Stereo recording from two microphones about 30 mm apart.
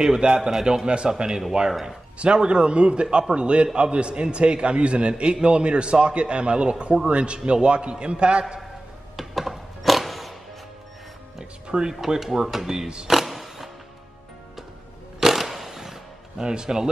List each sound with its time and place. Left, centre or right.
0.2 s a man's voice: right
1.7 s speech: centre
2.1 s a man's voice: right
9.1 s a sound: centre
11.6 s a sound: right
12.1 s speech: centre
12.8 s speech: right
13.1 s music: centre
15.1 s music: centre
16.3 s speech: right